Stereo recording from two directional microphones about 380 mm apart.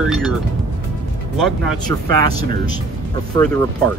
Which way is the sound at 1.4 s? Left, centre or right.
Centre.